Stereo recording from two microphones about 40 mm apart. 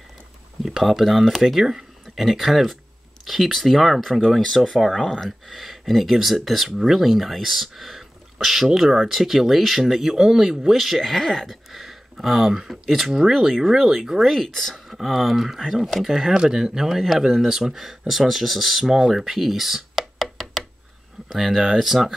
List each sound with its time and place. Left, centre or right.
0.7 s speech: centre
5.0 s speech: centre
5.5 s speech: centre
14.2 s speech: centre
14.7 s speech: centre
21.3 s speech: centre